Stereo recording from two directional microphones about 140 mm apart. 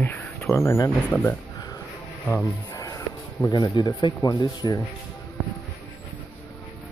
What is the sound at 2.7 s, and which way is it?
Speech, 25° left (ahead or behind).